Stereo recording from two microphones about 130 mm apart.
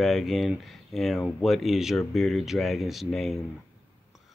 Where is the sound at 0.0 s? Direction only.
Centre (ahead or behind).